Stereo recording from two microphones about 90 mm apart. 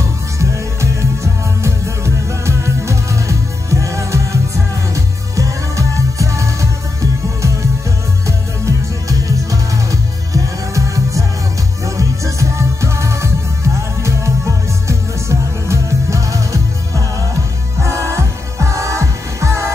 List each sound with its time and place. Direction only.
0.4 s music: 35° right (ahead or behind)